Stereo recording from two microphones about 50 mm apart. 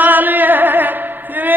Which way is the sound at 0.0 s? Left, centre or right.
Right.